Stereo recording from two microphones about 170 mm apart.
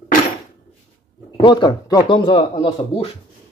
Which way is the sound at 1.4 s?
25° left (ahead or behind).